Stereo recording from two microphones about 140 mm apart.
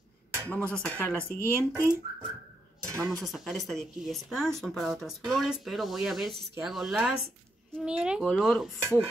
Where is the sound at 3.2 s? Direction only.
Centre (ahead or behind).